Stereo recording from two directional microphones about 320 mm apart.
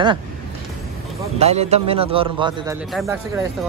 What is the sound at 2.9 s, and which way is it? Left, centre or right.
Speech, centre.